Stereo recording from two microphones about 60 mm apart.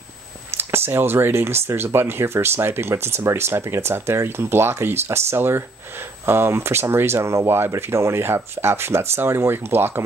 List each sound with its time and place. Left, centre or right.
0.5 s speech: right